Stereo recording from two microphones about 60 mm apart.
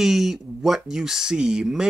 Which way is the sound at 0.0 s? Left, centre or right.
Centre.